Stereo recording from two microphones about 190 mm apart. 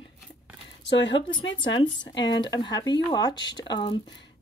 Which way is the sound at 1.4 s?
80° left.